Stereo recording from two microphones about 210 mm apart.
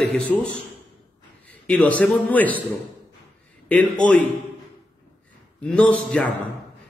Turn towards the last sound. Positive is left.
turn(degrees=5)  # may be behind; listen again after turning